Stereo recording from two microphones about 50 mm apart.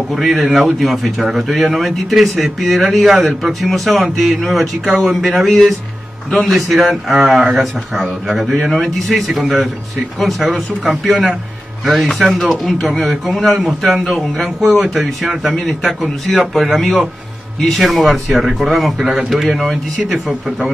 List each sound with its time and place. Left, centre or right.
0.1 s speech: centre
7.2 s speech: centre
7.5 s speech: centre